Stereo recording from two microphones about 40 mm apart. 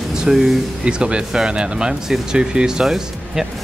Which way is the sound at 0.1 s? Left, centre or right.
Centre.